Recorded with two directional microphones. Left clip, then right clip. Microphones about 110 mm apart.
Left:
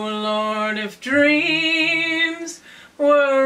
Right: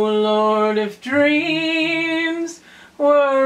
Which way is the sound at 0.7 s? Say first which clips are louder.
Right 1 dB; 20° left (ahead or behind).